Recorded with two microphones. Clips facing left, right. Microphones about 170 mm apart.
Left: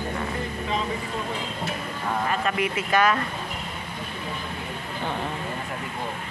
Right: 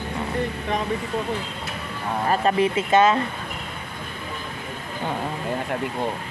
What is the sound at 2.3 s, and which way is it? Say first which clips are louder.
Speech: right 10 dB; 30° right (ahead or behind).